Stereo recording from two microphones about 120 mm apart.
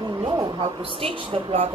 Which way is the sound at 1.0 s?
55° right (ahead or behind).